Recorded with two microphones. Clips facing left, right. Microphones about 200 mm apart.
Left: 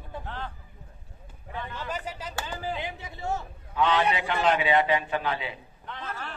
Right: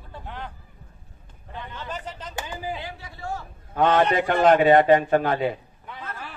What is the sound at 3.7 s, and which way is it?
A man's voice, 50° right (ahead or behind).